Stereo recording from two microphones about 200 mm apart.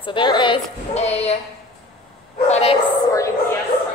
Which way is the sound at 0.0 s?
25° left (ahead or behind).